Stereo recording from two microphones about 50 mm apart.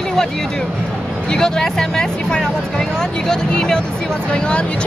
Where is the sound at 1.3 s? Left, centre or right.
Centre.